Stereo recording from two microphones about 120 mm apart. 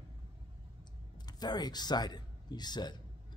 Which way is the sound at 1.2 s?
35° left (ahead or behind).